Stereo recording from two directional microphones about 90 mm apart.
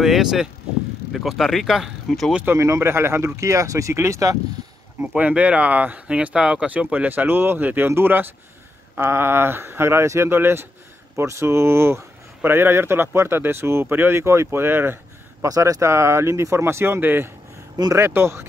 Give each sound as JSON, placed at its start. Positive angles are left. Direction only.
{"t": 0.0, "sound": "vehicle", "side_deg": -5}
{"t": 1.1, "sound": "speech", "side_deg": 0}
{"t": 2.4, "sound": "speech", "side_deg": -30}
{"t": 5.0, "sound": "speech", "side_deg": -15}
{"t": 15.4, "sound": "speech", "side_deg": -40}